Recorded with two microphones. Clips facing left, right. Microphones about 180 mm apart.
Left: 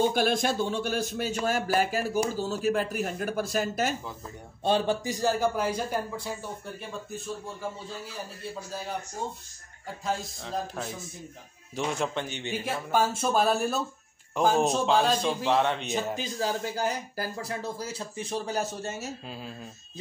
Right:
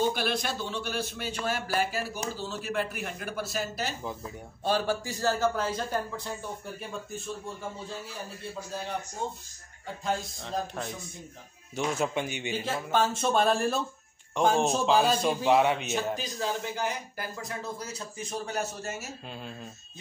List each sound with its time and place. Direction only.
0.0 s speech: 45° left (ahead or behind)
4.6 s a man's voice: 20° left (ahead or behind)
6.6 s a man's voice: centre (ahead or behind)
10.0 s a man's voice: centre (ahead or behind)
12.6 s a man's voice: 10° left (ahead or behind)
16.2 s speech: 35° left (ahead or behind)
18.9 s a man's voice: centre (ahead or behind)